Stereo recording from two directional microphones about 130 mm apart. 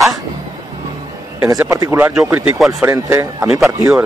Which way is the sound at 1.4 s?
25° right (ahead or behind).